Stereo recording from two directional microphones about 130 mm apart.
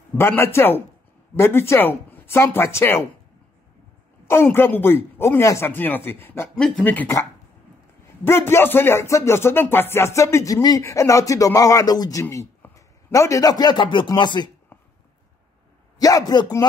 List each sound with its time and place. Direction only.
0.2 s speech: 20° left (ahead or behind)
4.3 s speech: 20° left (ahead or behind)
6.6 s speech: 5° left (ahead or behind)
8.3 s speech: 20° left (ahead or behind); by 14.5 s 35° left (ahead or behind)
14.7 s a sound: 15° left (ahead or behind)
16.0 s speech: 30° left (ahead or behind)